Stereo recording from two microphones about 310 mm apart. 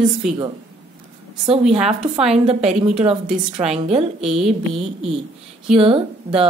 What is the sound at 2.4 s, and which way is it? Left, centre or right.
A woman's voice, centre.